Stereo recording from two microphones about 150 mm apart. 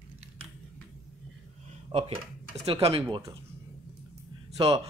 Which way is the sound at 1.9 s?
45° right (ahead or behind).